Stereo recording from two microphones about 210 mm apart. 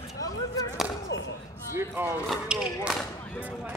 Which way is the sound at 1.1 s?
55° left (ahead or behind).